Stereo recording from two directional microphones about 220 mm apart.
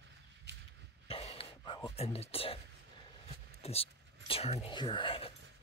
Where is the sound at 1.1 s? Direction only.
25° left (ahead or behind).